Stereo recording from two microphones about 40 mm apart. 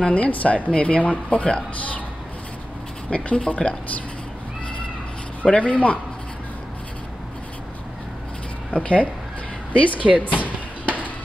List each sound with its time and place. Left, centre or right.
0.0 s speech: left
3.1 s speech: left
5.4 s speech: left
8.7 s speech: left
10.0 s speech: right